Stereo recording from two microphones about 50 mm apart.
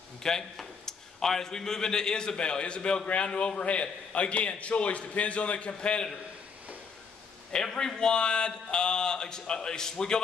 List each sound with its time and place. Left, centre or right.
0.2 s a man's voice: centre
7.5 s a man's voice: centre